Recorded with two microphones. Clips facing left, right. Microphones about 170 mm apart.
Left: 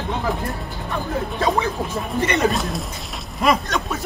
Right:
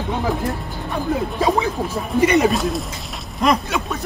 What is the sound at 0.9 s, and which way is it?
Speech, 15° right (ahead or behind).